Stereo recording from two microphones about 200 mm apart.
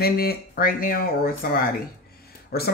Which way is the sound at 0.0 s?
50° left (ahead or behind).